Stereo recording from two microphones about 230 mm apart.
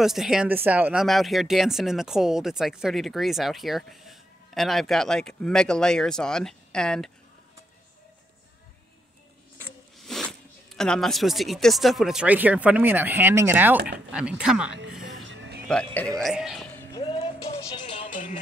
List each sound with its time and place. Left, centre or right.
0.0 s speech: centre
9.9 s speech: centre
14.9 s music: centre
15.2 s music: right
15.7 s speech: centre
16.7 s music: centre